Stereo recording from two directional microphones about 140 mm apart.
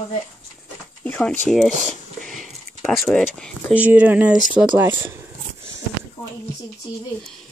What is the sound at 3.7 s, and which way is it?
Speech, 10° right (ahead or behind).